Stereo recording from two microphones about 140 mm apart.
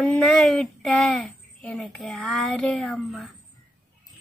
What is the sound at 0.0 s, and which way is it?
A woman's voice, centre (ahead or behind).